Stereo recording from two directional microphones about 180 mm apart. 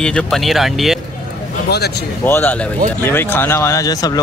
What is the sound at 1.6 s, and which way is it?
Speech, 65° left (ahead or behind).